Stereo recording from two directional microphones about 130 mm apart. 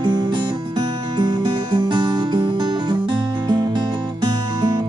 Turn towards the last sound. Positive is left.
turn(degrees=-30)  # may be behind; listen again after turning